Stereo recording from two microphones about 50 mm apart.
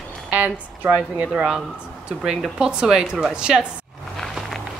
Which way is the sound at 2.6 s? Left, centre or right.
Centre.